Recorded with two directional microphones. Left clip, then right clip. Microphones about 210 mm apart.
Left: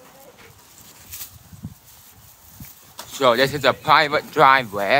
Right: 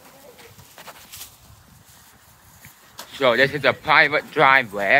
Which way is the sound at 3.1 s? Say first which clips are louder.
Left 1 dB; 15° left (ahead or behind).